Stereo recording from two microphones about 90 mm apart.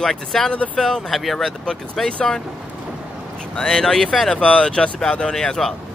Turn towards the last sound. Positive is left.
turn(degrees=5)  # may be behind; listen again after turning